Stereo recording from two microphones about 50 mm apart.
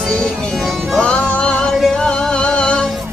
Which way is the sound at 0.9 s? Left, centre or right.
Left.